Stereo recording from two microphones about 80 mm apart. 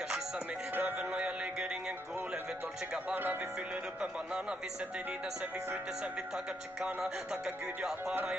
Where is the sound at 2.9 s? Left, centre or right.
Right.